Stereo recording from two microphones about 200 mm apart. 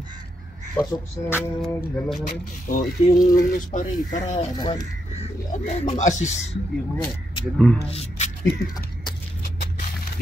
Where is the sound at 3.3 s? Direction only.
40° left (ahead or behind).